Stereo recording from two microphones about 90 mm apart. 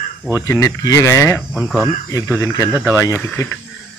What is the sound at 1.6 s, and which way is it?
Speech, 5° left (ahead or behind).